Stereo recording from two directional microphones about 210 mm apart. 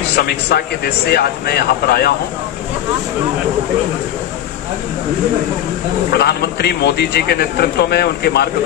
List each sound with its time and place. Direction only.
0.1 s a man's voice: 50° left (ahead or behind)
6.1 s a man's voice: 50° left (ahead or behind)